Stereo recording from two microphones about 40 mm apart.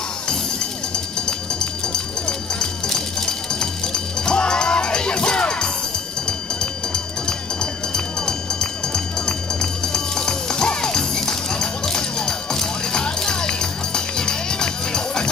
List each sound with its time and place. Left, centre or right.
1.2 s run: centre